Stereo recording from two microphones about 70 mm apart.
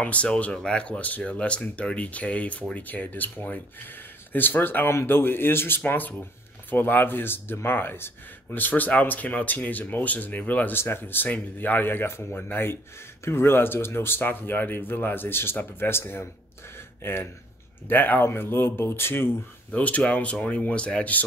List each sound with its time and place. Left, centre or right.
0.0 s speech: centre
10.8 s speech: left
19.8 s speech: centre